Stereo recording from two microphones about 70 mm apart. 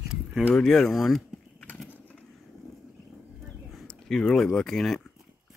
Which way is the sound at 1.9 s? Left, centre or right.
Left.